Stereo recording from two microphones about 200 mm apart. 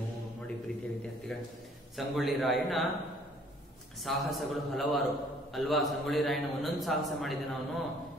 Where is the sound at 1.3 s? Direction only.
Centre (ahead or behind).